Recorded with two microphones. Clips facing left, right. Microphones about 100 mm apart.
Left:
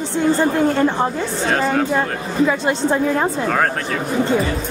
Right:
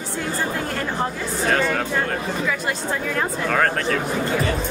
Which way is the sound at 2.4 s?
25° left (ahead or behind).